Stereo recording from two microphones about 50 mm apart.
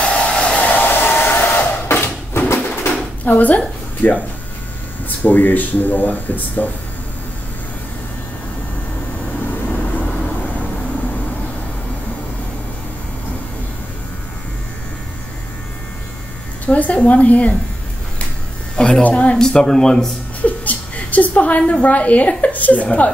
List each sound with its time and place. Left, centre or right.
0.1 s hair dryer: left
0.7 s hair dryer: left
1.9 s a sound: left
3.3 s a woman's voice: left
9.7 s vehicle: left
16.6 s a woman's voice: left
18.8 s speech: centre
19.0 s a woman's voice: left
19.3 s speech: centre
20.4 s a woman's voice: left